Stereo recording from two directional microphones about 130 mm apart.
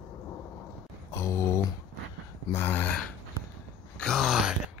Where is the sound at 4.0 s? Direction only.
Centre (ahead or behind).